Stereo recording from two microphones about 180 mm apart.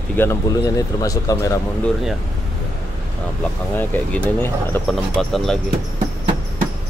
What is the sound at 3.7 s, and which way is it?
A man's voice, 10° left (ahead or behind).